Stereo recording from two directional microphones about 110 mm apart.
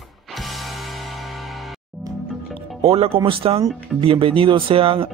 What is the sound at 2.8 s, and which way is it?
Speech, 55° right (ahead or behind).